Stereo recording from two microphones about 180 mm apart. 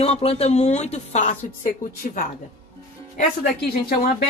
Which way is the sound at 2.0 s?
50° left (ahead or behind).